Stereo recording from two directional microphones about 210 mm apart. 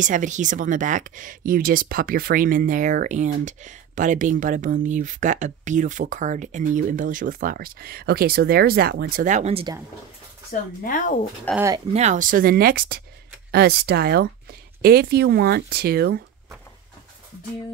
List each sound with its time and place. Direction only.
0.0 s speech: 35° right (ahead or behind)
10.8 s speech: 40° left (ahead or behind)
11.5 s speech: 5° left (ahead or behind)
11.9 s speech: 35° right (ahead or behind); by 16.2 s 50° right (ahead or behind)